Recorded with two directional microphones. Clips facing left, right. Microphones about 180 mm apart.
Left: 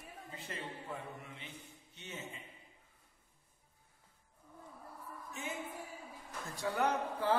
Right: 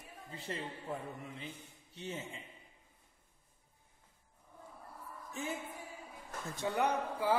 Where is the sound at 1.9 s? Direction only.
30° right (ahead or behind).